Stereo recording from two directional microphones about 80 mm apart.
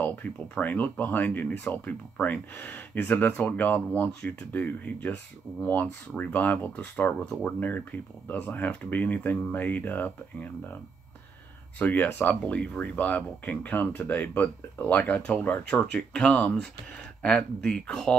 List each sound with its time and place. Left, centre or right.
0.0 s speech: left
11.8 s speech: left